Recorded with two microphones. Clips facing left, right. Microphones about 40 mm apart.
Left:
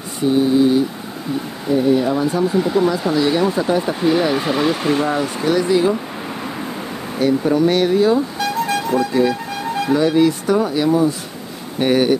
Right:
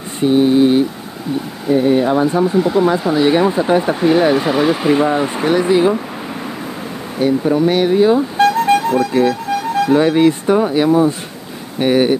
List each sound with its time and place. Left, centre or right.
0.2 s mantra: right
1.7 s speech: right
2.4 s speech: centre
3.2 s speech: right
5.2 s speech: right
7.2 s speech: centre
8.4 s music: right
8.9 s speech: centre
9.9 s speech: right
11.8 s speech: centre